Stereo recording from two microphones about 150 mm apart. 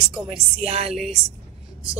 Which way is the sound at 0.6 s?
45° right (ahead or behind).